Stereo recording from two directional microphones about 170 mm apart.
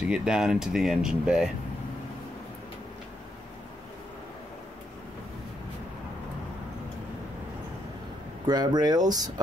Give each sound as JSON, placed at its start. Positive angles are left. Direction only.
{"t": 0.1, "sound": "speech", "side_deg": -5}
{"t": 8.5, "sound": "speech", "side_deg": -25}